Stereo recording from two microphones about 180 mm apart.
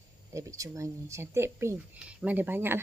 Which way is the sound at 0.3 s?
15° right (ahead or behind).